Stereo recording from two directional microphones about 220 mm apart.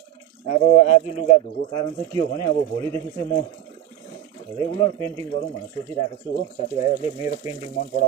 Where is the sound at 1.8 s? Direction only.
15° left (ahead or behind).